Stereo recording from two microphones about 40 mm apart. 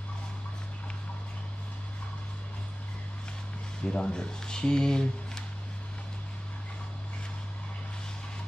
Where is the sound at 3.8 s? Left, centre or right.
Left.